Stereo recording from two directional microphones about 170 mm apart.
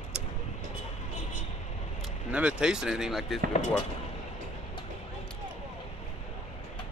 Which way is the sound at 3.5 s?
40° left (ahead or behind).